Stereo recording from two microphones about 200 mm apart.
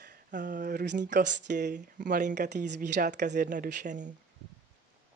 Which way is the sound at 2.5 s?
60° right (ahead or behind).